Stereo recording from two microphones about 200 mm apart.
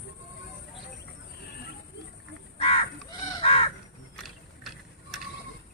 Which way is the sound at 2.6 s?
30° left (ahead or behind).